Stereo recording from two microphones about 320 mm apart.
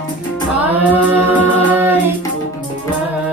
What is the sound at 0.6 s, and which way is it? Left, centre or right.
Singing, centre.